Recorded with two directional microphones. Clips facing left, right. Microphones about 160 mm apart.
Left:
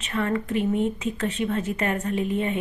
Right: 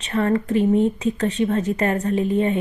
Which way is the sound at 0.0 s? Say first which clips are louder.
Right 5 dB; 35° right (ahead or behind).